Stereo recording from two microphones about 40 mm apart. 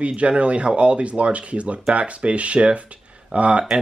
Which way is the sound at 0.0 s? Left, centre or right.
Right.